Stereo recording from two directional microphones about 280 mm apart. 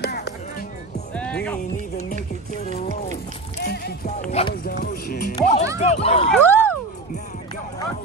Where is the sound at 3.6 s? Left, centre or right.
Left.